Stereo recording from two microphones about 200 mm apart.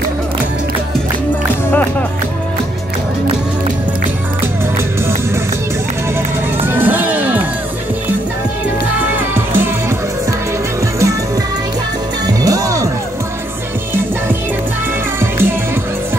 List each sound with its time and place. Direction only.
1.7 s music: 10° left (ahead or behind)
6.6 s music: 10° right (ahead or behind)
9.1 s music: 10° right (ahead or behind)
12.4 s music: 15° right (ahead or behind)
15.1 s music: 10° right (ahead or behind)